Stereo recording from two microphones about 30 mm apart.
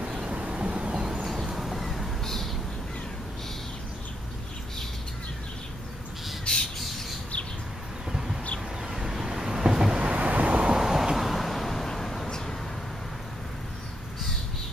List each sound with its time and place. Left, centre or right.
0.3 s vehicle: right
1.2 s a sound: centre
2.2 s a sound: centre
6.5 s bird: left
8.9 s vehicle: centre
10.0 s waves: right
10.8 s a sound: centre
11.1 s vehicle: centre
12.3 s vehicle: left